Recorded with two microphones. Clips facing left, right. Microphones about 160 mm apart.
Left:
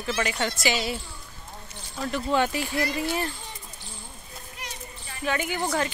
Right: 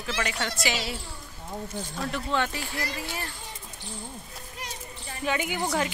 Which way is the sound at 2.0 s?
Centre (ahead or behind).